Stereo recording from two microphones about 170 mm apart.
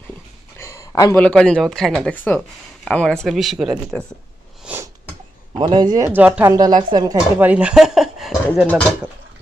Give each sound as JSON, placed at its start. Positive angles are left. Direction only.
{"t": 0.6, "sound": "speech", "side_deg": 20}
{"t": 5.5, "sound": "speech", "side_deg": -30}
{"t": 6.5, "sound": "speech", "side_deg": -25}
{"t": 7.3, "sound": "speech", "side_deg": -10}